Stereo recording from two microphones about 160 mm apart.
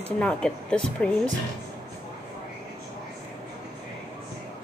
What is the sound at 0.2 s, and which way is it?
Speech, 5° left (ahead or behind).